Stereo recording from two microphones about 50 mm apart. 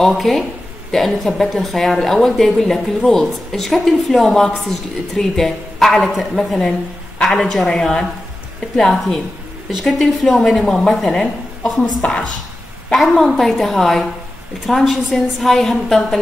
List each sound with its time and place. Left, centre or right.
0.0 s a woman's voice: centre
11.6 s a woman's voice: left
12.9 s a woman's voice: centre